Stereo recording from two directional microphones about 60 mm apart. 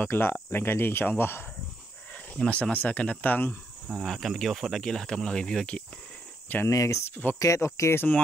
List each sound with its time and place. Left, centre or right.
0.0 s speech: left
2.3 s speech: centre
4.0 s speech: centre
4.8 s speech: centre
6.7 s speech: left